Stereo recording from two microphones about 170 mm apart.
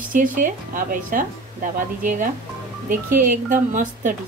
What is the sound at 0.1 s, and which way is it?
Speech, 55° right (ahead or behind).